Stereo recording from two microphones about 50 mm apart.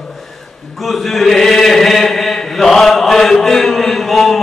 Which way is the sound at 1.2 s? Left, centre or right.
Centre.